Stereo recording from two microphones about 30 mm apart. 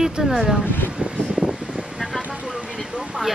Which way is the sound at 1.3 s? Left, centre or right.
Right.